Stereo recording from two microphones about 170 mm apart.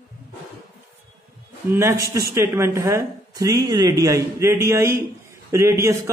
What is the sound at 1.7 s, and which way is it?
A man's voice, 15° right (ahead or behind).